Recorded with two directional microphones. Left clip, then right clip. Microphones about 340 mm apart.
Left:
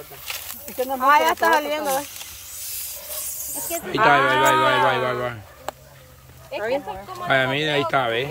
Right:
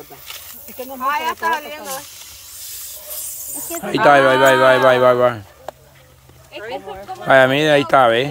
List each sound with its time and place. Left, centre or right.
0.9 s speech: centre
3.2 s snake: centre
3.8 s speech: centre
7.2 s speech: centre